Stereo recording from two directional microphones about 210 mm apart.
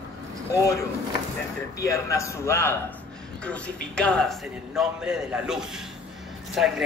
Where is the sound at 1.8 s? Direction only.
15° left (ahead or behind).